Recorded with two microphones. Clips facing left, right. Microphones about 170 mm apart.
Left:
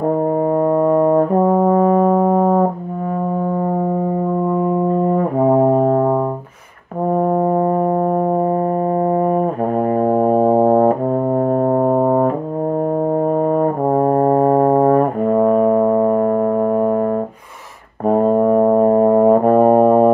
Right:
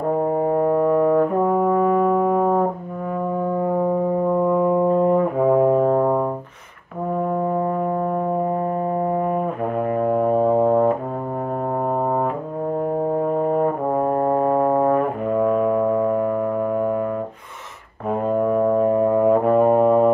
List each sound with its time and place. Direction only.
0.5 s brass instrument: 45° left (ahead or behind)
7.2 s brass instrument: 40° left (ahead or behind)
9.0 s brass instrument: 40° left (ahead or behind)
9.9 s music: 40° left (ahead or behind)
13.4 s brass instrument: 45° left (ahead or behind)
18.0 s brass instrument: 40° left (ahead or behind)